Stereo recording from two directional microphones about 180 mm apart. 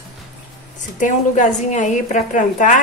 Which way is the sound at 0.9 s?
45° left (ahead or behind).